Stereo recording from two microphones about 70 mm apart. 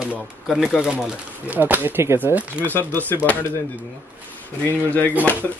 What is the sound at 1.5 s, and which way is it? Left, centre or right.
Speech, right.